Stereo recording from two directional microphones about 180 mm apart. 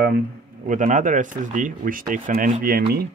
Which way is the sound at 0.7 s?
45° right (ahead or behind).